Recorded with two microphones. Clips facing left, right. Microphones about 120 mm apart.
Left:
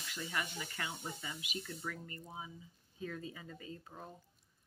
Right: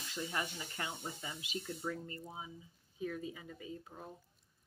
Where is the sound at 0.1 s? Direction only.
25° right (ahead or behind).